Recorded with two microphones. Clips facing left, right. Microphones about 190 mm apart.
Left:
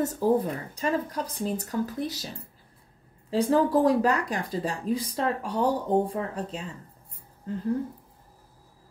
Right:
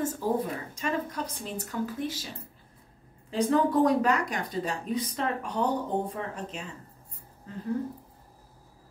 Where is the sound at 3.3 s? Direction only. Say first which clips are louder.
Left 2 dB; 30° left (ahead or behind).